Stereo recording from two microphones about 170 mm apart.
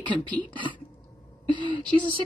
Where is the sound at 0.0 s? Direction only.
25° right (ahead or behind).